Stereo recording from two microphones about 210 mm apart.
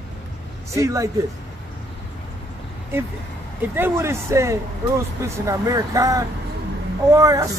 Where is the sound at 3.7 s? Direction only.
10° right (ahead or behind).